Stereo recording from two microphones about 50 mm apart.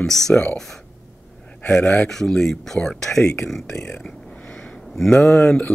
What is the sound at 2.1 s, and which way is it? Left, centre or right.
Speech, centre.